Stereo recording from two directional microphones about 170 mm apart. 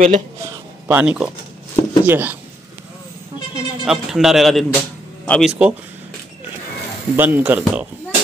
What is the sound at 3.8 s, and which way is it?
A man's voice, 5° right (ahead or behind).